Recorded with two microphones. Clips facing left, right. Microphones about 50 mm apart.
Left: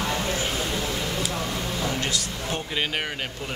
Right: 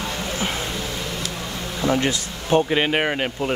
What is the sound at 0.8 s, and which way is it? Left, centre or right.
Vehicle, centre.